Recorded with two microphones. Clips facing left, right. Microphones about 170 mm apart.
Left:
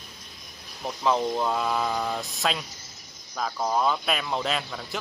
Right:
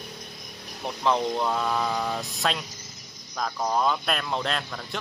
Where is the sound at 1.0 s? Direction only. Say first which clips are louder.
Even; 5° left (ahead or behind).